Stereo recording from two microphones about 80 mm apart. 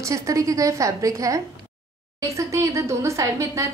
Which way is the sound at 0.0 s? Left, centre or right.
Right.